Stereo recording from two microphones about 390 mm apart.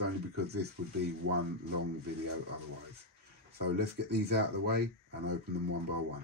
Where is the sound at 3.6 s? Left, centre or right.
Right.